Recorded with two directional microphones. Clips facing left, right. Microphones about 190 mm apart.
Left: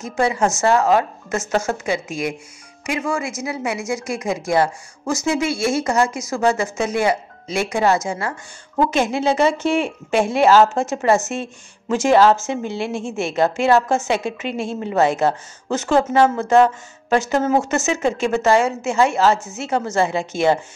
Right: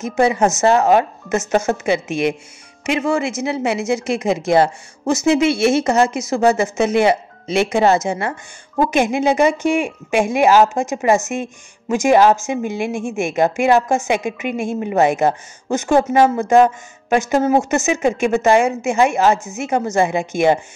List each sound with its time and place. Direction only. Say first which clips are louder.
0.0 s a woman's voice: right 4 dB; 20° right (ahead or behind)